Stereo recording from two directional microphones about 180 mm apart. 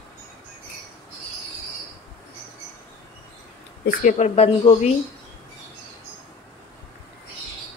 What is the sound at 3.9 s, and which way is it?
Speech, 45° left (ahead or behind).